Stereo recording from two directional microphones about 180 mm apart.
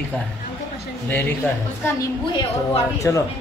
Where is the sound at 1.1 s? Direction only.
10° left (ahead or behind).